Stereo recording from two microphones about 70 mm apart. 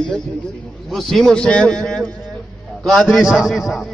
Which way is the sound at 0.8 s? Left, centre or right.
Centre.